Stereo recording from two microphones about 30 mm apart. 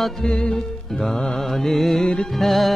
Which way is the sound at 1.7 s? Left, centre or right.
Centre.